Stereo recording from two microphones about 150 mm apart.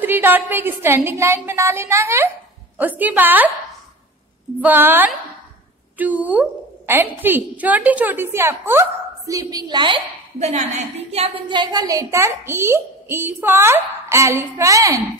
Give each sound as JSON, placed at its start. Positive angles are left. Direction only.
{"t": 0.0, "sound": "a woman's voice", "side_deg": -15}
{"t": 4.6, "sound": "a woman's voice", "side_deg": -10}
{"t": 10.4, "sound": "a woman's voice", "side_deg": -50}